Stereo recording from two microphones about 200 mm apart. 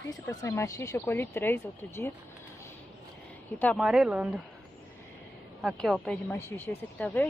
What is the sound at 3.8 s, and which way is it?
Speech, 5° right (ahead or behind).